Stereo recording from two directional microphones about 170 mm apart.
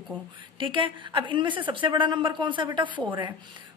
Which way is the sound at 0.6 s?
30° right (ahead or behind).